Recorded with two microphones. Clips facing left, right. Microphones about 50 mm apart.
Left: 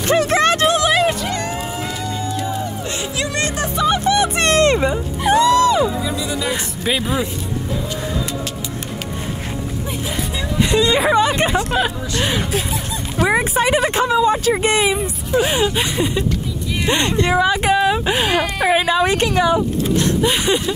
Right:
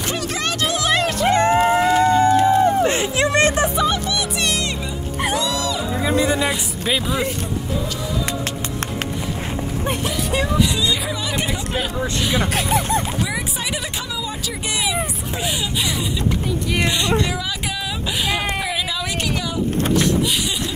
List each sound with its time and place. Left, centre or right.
0.1 s a sound: left
0.8 s music: centre
1.2 s a sound: right
1.9 s a sound: right
3.9 s music: left
6.0 s music: right
9.8 s music: right
10.6 s speech: left
12.5 s speech: right
13.2 s speech: left